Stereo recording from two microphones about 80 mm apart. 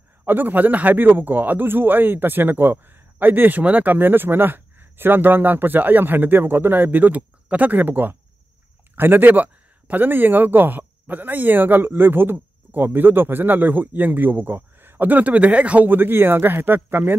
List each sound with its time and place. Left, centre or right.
0.2 s speech: right